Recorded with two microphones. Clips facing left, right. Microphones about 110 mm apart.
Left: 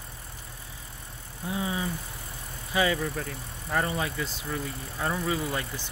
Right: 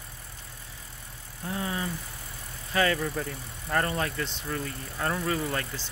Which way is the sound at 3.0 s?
Centre (ahead or behind).